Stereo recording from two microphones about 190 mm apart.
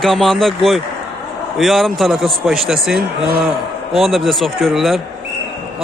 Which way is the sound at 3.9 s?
Centre (ahead or behind).